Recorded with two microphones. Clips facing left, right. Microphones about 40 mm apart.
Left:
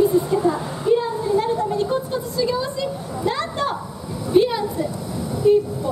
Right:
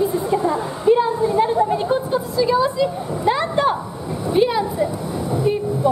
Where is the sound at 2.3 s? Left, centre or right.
Centre.